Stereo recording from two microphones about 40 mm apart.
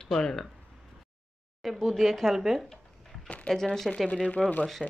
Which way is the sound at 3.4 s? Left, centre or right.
Centre.